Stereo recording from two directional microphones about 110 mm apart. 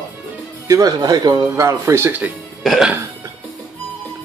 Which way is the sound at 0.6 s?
35° right (ahead or behind).